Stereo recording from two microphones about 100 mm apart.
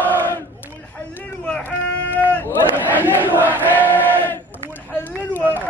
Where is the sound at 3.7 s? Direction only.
20° left (ahead or behind).